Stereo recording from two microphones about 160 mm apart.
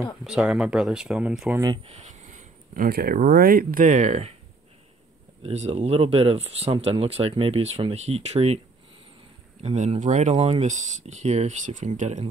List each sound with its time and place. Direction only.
0.2 s speech: 5° right (ahead or behind)
1.6 s speech: 25° right (ahead or behind)
1.9 s speech: 50° right (ahead or behind)
5.4 s speech: 40° right (ahead or behind)
9.6 s speech: 45° right (ahead or behind)